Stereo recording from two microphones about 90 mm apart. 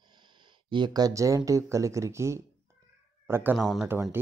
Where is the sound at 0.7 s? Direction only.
55° right (ahead or behind); by 3.6 s 25° right (ahead or behind).